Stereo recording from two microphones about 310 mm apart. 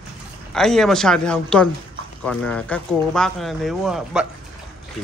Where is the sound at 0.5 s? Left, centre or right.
Centre.